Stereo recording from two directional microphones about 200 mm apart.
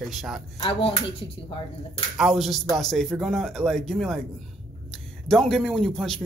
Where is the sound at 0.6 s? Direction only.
25° left (ahead or behind).